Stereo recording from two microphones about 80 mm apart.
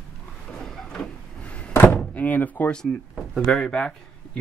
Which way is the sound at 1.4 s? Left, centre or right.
Centre.